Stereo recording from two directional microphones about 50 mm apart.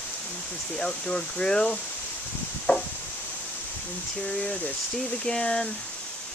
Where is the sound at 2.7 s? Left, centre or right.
Left.